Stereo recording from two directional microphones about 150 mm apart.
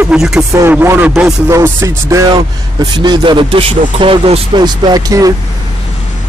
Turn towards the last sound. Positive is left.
turn(degrees=-25)  # may be behind; listen again after turning